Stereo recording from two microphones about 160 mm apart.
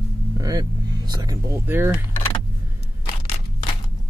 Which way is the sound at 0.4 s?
25° right (ahead or behind).